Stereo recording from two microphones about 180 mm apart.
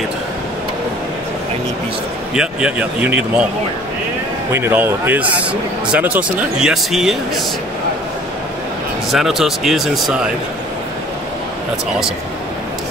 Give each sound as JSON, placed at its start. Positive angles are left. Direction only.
{"t": 2.3, "sound": "a man's voice", "side_deg": -5}
{"t": 4.5, "sound": "a man's voice", "side_deg": -15}
{"t": 9.1, "sound": "speech", "side_deg": 0}